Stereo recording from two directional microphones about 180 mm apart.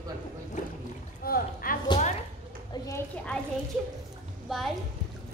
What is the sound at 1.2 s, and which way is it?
Speech, 55° left (ahead or behind).